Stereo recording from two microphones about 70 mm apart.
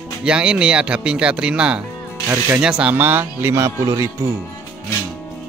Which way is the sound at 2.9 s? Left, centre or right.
Right.